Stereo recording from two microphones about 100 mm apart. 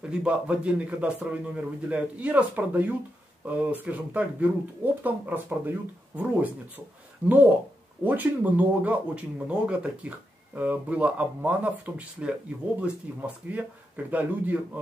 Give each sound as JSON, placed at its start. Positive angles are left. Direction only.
{"t": 0.0, "sound": "speech", "side_deg": -10}